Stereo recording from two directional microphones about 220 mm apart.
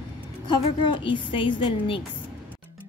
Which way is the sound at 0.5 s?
20° left (ahead or behind).